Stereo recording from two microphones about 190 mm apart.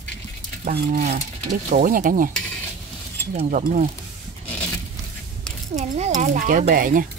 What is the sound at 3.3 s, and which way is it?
Speech, 40° right (ahead or behind).